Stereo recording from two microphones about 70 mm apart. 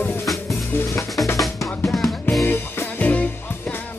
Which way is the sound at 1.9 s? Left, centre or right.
Centre.